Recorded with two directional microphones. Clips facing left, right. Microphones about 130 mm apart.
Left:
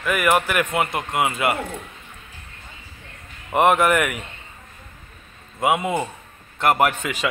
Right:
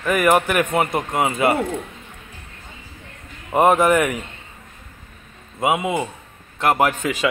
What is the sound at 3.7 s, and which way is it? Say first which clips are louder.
Speech: right 2 dB; 30° right (ahead or behind).